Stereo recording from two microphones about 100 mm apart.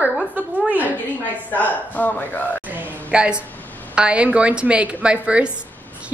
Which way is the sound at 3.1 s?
10° right (ahead or behind).